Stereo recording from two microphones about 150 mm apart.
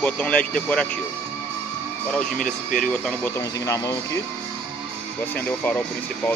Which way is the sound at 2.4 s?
65° left (ahead or behind).